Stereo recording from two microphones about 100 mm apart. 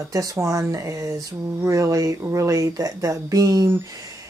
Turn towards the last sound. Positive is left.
turn(degrees=-40)  # may be behind; listen again after turning